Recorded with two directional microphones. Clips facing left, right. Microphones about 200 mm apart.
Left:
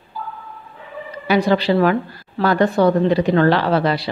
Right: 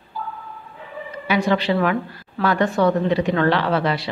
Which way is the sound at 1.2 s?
35° left (ahead or behind).